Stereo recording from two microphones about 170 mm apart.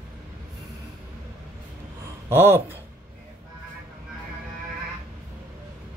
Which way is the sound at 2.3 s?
10° right (ahead or behind).